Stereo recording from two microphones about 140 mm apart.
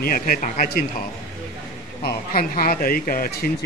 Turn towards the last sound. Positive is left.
turn(degrees=90)